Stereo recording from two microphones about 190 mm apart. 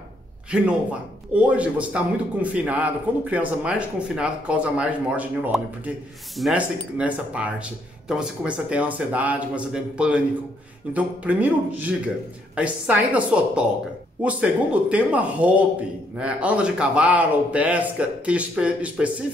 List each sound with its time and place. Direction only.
0.5 s a man's voice: 5° right (ahead or behind)